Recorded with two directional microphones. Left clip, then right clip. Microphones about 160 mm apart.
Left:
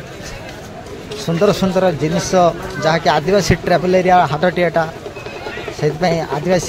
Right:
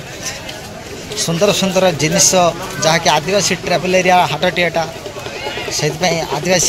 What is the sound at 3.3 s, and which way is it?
Speech, 40° left (ahead or behind).